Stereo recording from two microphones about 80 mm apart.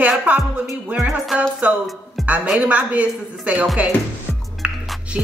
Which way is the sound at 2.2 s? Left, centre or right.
Centre.